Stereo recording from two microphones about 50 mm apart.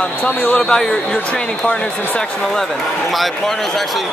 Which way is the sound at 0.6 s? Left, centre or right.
Centre.